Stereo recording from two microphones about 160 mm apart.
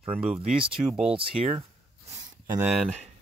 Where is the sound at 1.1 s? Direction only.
35° right (ahead or behind).